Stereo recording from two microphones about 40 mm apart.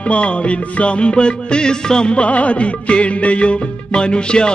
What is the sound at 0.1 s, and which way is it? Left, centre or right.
Music, left.